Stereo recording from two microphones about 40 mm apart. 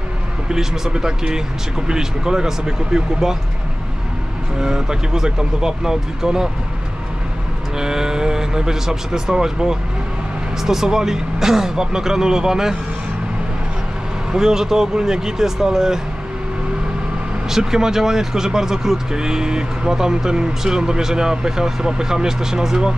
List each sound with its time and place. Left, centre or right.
0.5 s speech: centre
4.6 s speech: centre
7.8 s speech: centre
14.3 s speech: centre
17.5 s speech: centre